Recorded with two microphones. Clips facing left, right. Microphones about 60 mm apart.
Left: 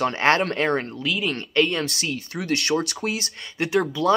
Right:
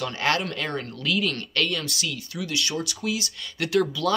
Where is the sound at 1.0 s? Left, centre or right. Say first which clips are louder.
Right 5 dB; centre.